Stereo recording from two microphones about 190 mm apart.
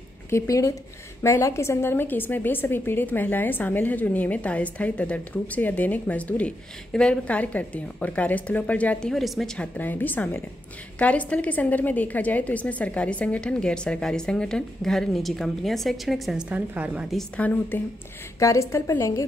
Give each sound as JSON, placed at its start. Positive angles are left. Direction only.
{"t": 0.3, "sound": "a woman's voice", "side_deg": 15}